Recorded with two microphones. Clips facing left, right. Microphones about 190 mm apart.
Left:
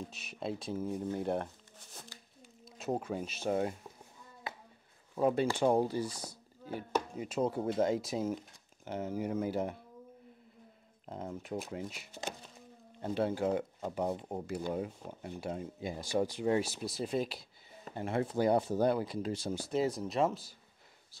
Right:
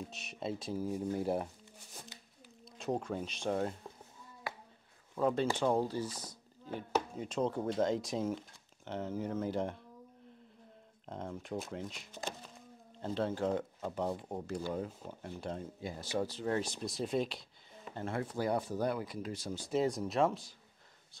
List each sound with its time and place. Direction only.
0.1 s speech: centre (ahead or behind)
2.6 s speech: 5° left (ahead or behind)
5.1 s speech: 10° left (ahead or behind)
11.1 s speech: 5° left (ahead or behind)
17.9 s speech: 20° left (ahead or behind)
19.7 s speech: centre (ahead or behind)